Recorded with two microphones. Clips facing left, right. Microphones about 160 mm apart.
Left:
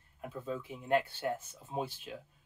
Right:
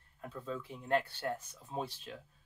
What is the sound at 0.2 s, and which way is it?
Speech, 20° left (ahead or behind).